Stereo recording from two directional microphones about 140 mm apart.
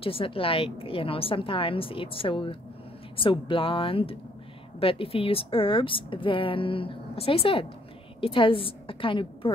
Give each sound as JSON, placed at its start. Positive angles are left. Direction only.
{"t": 0.0, "sound": "a woman's voice", "side_deg": 40}